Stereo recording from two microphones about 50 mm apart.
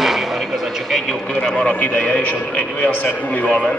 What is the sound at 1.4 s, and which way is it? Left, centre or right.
A man's voice, centre.